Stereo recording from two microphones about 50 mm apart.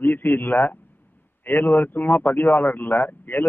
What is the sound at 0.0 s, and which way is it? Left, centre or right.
A man's voice, left.